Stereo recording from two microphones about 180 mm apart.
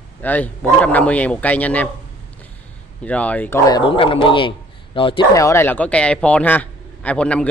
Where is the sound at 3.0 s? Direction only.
10° left (ahead or behind); by 5.2 s 30° left (ahead or behind).